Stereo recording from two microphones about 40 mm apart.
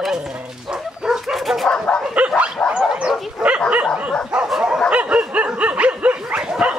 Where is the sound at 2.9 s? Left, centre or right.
Centre.